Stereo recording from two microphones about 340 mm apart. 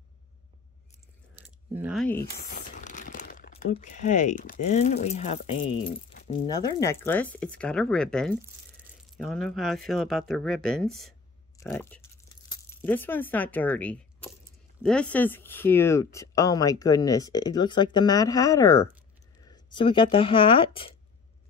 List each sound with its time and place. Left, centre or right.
1.3 s a sound: centre
2.1 s crumpling: left
3.7 s speech: left